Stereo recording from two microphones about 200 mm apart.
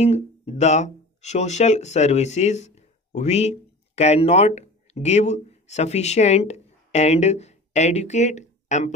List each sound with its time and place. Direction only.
0.0 s speech: 35° left (ahead or behind)